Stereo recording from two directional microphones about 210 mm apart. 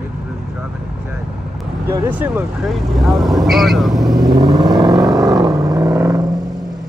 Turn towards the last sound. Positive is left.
turn(degrees=-15)  # may be behind; listen again after turning